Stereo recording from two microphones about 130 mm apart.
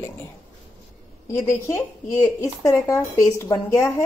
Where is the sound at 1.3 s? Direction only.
20° left (ahead or behind).